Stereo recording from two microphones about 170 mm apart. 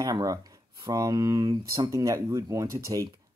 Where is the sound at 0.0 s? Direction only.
20° right (ahead or behind).